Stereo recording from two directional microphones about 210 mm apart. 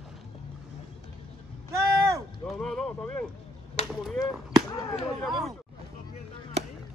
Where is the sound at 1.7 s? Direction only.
15° right (ahead or behind).